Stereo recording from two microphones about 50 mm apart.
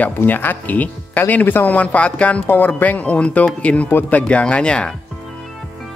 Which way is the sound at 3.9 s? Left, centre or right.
Left.